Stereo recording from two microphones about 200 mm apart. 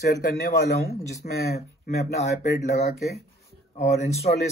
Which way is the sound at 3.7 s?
35° left (ahead or behind).